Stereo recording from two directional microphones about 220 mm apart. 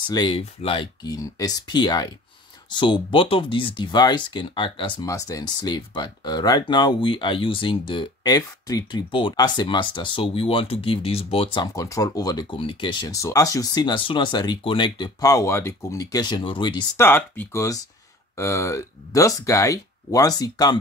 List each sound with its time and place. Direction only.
0.1 s speech: 20° left (ahead or behind)